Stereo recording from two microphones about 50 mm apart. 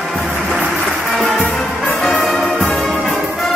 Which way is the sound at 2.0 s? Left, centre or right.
Centre.